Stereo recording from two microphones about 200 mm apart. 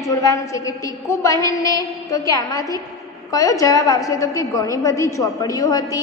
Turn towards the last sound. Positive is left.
turn(degrees=15)  # may be behind; listen again after turning